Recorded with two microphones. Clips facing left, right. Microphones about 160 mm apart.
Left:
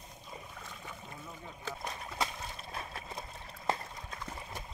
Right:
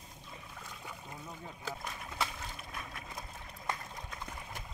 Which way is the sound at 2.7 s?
30° left (ahead or behind).